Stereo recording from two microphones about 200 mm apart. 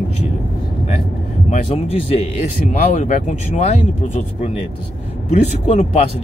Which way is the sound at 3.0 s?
35° left (ahead or behind).